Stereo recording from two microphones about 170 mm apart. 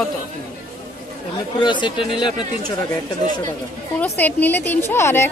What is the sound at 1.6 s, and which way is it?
Speech, 25° left (ahead or behind).